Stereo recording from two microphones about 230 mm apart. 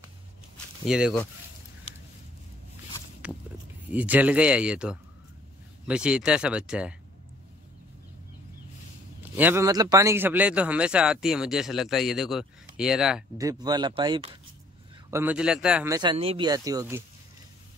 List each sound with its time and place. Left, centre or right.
0.8 s a man's voice: centre
3.9 s a man's voice: centre
9.2 s a man's voice: centre
13.4 s a man's voice: centre
15.0 s a man's voice: centre